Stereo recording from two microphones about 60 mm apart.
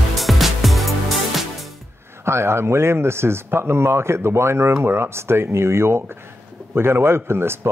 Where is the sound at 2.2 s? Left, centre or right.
Right.